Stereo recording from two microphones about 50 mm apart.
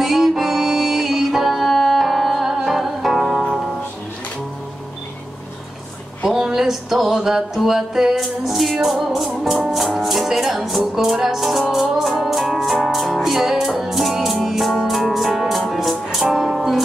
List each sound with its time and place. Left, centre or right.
0.0 s music: centre
6.2 s music: centre
9.1 s speech: centre
11.0 s music: centre